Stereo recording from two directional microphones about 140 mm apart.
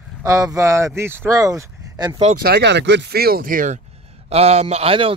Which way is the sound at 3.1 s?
90° right.